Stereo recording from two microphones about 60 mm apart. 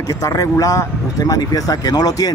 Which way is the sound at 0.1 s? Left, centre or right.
Left.